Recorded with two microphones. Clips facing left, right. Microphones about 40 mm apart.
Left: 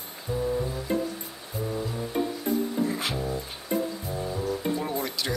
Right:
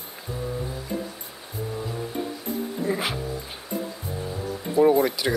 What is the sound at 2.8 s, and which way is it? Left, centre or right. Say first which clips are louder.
Music: right 3 dB; centre.